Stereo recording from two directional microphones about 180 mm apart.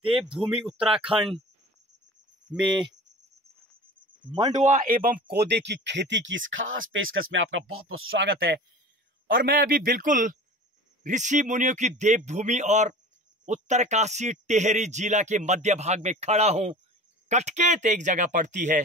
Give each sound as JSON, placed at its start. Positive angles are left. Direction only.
{"t": 0.1, "sound": "speech", "side_deg": -5}
{"t": 2.6, "sound": "speech", "side_deg": 0}
{"t": 4.5, "sound": "speech", "side_deg": -45}
{"t": 5.3, "sound": "speech", "side_deg": -65}
{"t": 8.1, "sound": "speech", "side_deg": -80}
{"t": 9.3, "sound": "speech", "side_deg": -55}